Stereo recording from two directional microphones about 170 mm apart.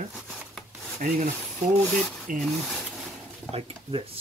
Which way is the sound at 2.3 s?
50° right (ahead or behind).